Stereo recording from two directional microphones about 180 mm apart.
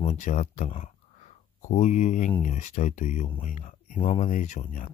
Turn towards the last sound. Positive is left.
turn(degrees=40)  # may be behind; listen again after turning